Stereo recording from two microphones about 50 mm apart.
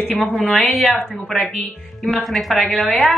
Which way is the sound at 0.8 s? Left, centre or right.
Centre.